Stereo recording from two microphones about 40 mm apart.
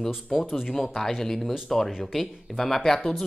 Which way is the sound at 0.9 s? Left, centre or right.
Centre.